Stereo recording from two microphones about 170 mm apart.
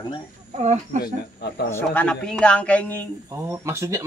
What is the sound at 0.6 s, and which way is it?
Speech, 40° right (ahead or behind).